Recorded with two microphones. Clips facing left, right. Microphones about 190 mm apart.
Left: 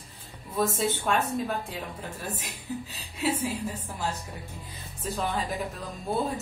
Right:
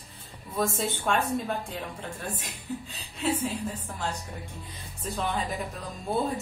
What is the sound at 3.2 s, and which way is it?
Speech, 10° left (ahead or behind).